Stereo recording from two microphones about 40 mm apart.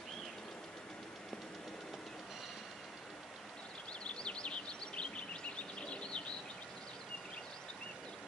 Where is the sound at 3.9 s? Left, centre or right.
Left.